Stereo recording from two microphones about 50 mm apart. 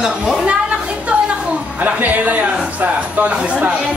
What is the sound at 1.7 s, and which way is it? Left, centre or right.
Music, right.